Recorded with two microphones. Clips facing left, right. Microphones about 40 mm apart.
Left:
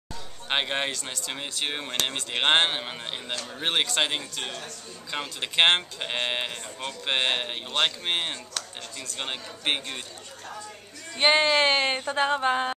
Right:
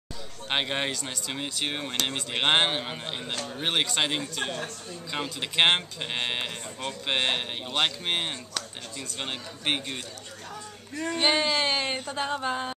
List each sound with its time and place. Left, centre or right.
0.5 s speech: centre
11.4 s speech: left